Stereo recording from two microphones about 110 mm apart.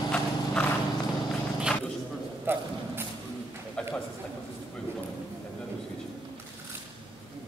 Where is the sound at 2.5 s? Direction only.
20° right (ahead or behind).